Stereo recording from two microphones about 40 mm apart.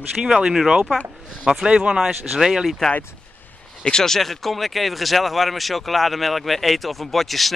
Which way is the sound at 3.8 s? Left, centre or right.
Centre.